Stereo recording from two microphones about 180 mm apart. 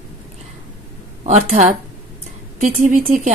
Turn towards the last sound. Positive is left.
turn(degrees=-50)  # may be behind; listen again after turning